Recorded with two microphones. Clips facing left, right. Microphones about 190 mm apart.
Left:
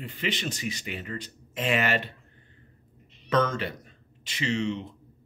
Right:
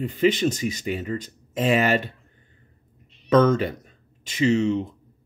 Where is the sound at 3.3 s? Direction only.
45° right (ahead or behind).